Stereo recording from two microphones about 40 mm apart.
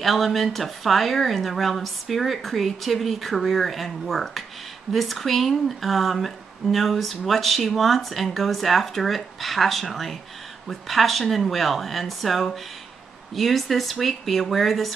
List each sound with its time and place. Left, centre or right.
0.0 s speech: centre